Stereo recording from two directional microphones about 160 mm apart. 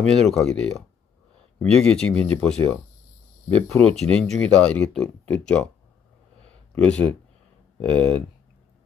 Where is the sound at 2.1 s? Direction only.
40° right (ahead or behind).